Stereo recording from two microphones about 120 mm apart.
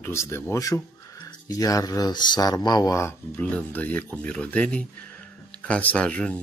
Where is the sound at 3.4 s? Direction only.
10° left (ahead or behind).